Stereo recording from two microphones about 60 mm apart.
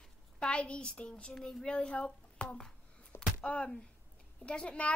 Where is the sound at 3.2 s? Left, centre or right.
Left.